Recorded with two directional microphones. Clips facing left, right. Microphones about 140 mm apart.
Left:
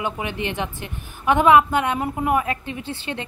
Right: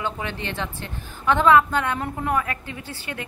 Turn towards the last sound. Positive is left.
turn(degrees=20)  # may be behind; listen again after turning